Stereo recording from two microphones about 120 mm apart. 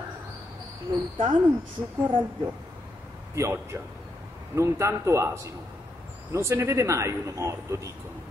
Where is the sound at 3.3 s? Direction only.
25° right (ahead or behind).